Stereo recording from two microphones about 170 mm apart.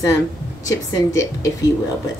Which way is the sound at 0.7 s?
20° left (ahead or behind).